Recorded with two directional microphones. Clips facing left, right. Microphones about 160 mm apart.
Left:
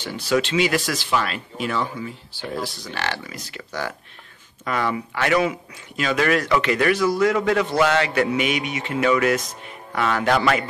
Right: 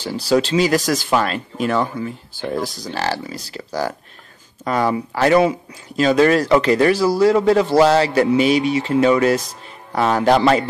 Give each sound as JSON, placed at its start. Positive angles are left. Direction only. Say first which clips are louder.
{"t": 0.0, "sound": "speech", "louder": "right 4 dB", "side_deg": -35}